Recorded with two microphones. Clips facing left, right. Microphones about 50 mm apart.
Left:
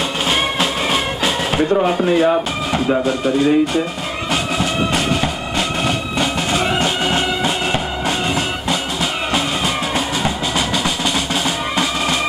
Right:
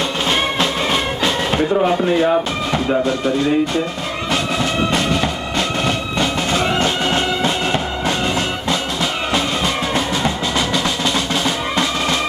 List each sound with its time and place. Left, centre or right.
0.3 s music: centre
2.0 s speech: centre
4.9 s music: centre
9.9 s music: centre
11.4 s drum: centre